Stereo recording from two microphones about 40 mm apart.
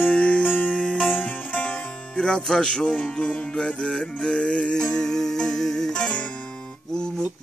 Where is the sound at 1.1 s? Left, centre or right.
Left.